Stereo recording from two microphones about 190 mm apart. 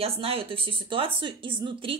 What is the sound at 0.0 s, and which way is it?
Speech, 30° right (ahead or behind).